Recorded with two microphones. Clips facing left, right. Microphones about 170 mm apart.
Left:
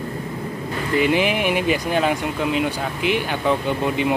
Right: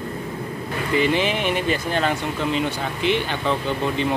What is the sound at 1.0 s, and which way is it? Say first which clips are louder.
Speech: left 4 dB; 10° left (ahead or behind).